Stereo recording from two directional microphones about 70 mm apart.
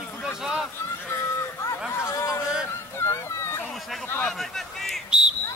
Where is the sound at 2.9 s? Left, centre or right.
Left.